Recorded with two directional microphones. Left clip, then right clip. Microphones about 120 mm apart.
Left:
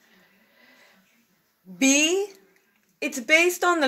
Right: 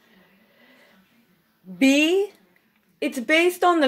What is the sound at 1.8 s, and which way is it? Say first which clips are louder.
Speech: right 2 dB; 25° right (ahead or behind).